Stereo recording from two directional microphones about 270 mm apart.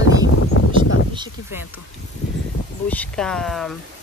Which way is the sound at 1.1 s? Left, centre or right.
Centre.